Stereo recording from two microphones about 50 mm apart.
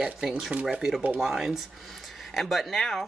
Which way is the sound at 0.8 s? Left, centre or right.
Centre.